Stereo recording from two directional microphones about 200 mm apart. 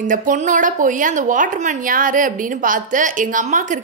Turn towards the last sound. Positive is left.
turn(degrees=-40)  # may be behind; listen again after turning